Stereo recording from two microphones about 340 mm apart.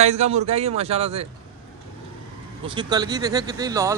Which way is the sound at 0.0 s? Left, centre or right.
Centre.